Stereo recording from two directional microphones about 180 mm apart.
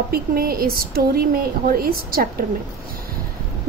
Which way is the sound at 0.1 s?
55° right (ahead or behind).